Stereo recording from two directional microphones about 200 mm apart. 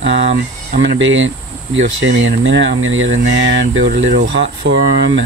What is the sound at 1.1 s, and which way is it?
Speech, 70° right (ahead or behind).